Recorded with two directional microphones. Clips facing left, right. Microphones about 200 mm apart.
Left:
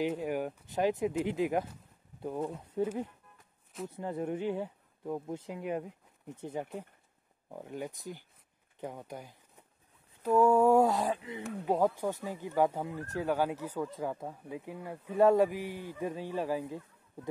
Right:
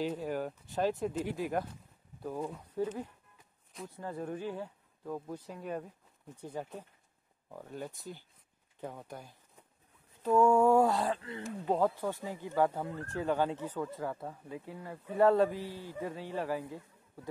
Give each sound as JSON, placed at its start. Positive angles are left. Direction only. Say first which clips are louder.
{"t": 0.0, "sound": "speech", "louder": "left 2 dB", "side_deg": 15}
{"t": 3.9, "sound": "a man's voice", "louder": "left 4 dB", "side_deg": 20}